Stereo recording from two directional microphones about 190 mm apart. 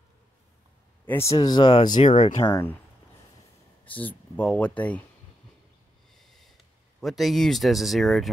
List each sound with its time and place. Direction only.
1.0 s speech: 15° left (ahead or behind)
2.0 s speech: 40° left (ahead or behind)
3.8 s speech: 10° left (ahead or behind)
6.1 s snort: centre (ahead or behind)
7.0 s speech: centre (ahead or behind)